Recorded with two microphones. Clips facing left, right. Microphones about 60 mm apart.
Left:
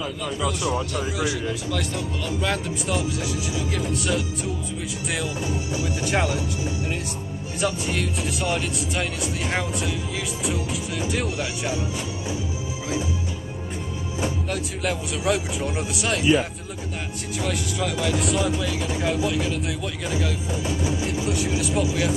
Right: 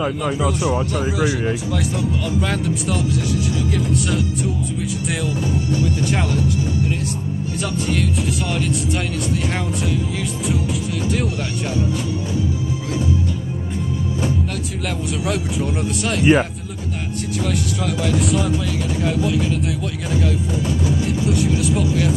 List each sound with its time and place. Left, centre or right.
0.2 s speech: right
2.4 s speech: centre
5.7 s speech: centre
7.6 s speech: centre
15.2 s speech: centre
17.5 s speech: centre
21.1 s speech: centre